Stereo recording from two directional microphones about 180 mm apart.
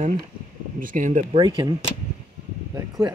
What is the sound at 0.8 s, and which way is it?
Speech, 45° right (ahead or behind).